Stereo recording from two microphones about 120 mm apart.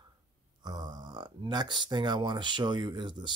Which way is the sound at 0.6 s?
35° right (ahead or behind).